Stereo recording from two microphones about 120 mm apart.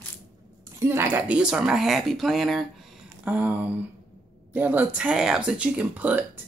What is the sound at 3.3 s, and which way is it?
Speech, 15° right (ahead or behind).